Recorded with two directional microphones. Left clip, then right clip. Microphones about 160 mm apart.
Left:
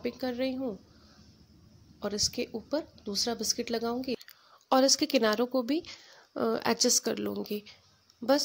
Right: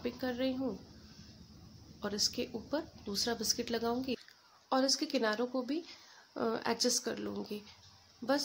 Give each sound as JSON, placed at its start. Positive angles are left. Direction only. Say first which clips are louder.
{"t": 0.0, "sound": "a woman's voice", "louder": "left 4 dB", "side_deg": 35}
{"t": 2.0, "sound": "a woman's voice", "louder": "left 4 dB", "side_deg": 35}